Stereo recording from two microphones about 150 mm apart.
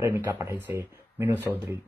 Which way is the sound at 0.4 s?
15° right (ahead or behind).